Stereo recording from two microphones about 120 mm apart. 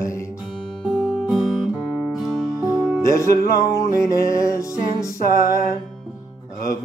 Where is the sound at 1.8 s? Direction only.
5° right (ahead or behind).